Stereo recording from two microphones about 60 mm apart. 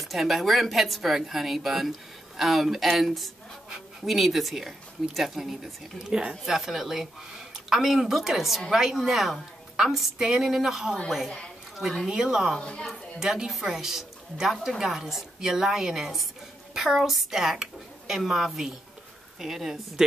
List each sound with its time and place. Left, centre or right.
0.0 s a woman's voice: centre
11.2 s a woman's voice: centre
12.1 s a woman's voice: centre
12.5 s a woman's voice: centre
13.2 s a woman's voice: centre